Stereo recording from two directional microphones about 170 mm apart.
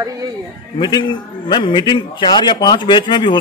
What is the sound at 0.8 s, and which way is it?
A man's voice, 25° left (ahead or behind).